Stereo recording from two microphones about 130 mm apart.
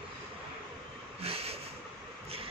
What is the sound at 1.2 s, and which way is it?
Snort, 50° right (ahead or behind).